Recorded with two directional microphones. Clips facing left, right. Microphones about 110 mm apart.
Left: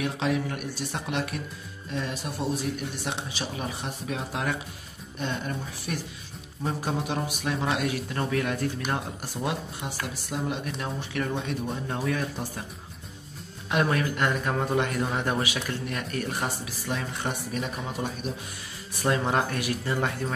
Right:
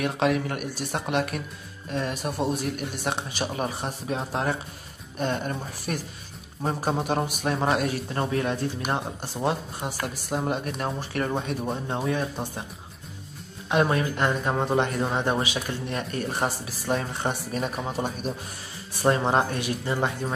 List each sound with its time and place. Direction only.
0.0 s speech: 55° right (ahead or behind); by 4.6 s 35° right (ahead or behind)
5.2 s a man's voice: 45° right (ahead or behind); by 9.6 s 30° right (ahead or behind)
9.8 s speech: 45° right (ahead or behind)
11.9 s a man's voice: 25° right (ahead or behind)
13.7 s a man's voice: 25° right (ahead or behind)